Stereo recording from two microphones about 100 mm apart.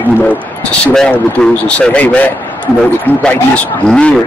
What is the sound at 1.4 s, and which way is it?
Speech, 10° left (ahead or behind).